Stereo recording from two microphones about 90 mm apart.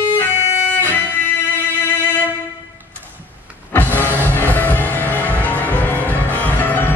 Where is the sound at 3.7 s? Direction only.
20° left (ahead or behind).